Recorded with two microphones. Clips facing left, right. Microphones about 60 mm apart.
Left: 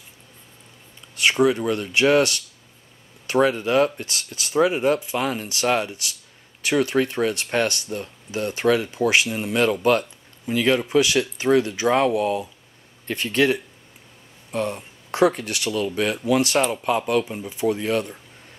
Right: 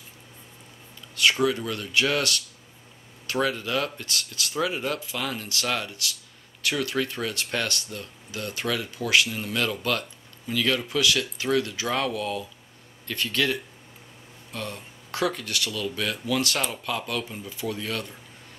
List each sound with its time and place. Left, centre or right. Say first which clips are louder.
1.4 s speech: left 6 dB; left